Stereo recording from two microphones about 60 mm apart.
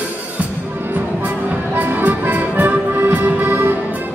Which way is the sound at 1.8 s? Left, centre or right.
Right.